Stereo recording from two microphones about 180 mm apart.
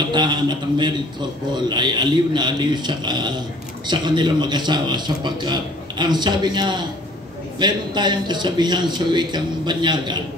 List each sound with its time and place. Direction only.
0.0 s a man's voice: 25° right (ahead or behind)